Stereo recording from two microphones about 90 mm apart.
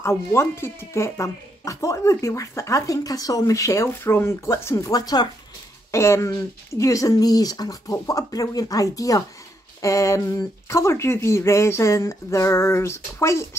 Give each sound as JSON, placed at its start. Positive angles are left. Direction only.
{"t": 0.0, "sound": "speech", "side_deg": 30}
{"t": 5.9, "sound": "speech", "side_deg": 30}